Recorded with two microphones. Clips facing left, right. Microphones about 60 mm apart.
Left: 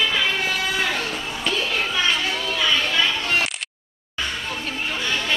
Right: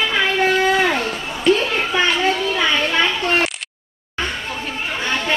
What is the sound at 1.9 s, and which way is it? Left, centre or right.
Children playing, right.